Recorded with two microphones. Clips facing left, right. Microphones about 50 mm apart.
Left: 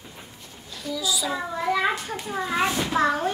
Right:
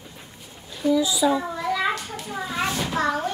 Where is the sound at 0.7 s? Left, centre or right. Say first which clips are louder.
Right 7 dB; right.